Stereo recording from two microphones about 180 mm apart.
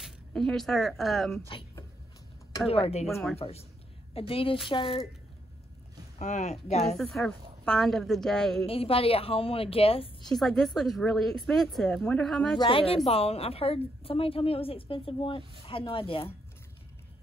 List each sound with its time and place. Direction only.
0.0 s speech: 5° left (ahead or behind)
2.7 s a woman's voice: 35° left (ahead or behind)
6.1 s a woman's voice: 40° left (ahead or behind)
7.0 s a woman's voice: centre (ahead or behind)
8.6 s a woman's voice: 30° left (ahead or behind)
10.2 s a woman's voice: centre (ahead or behind)
12.5 s a woman's voice: 30° left (ahead or behind)